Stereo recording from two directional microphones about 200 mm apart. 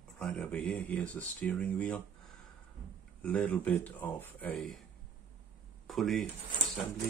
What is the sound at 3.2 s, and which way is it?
Speech, 5° left (ahead or behind).